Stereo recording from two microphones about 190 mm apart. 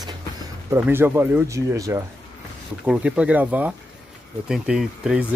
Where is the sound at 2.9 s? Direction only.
5° right (ahead or behind).